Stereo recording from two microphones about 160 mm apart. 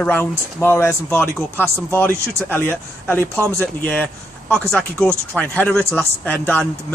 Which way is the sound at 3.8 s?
10° left (ahead or behind).